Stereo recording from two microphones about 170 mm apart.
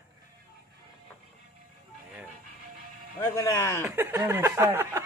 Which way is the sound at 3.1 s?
20° left (ahead or behind).